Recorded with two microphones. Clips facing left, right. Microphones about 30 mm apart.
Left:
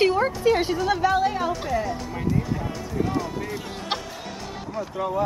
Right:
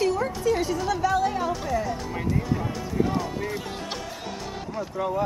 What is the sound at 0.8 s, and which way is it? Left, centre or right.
Speech, left.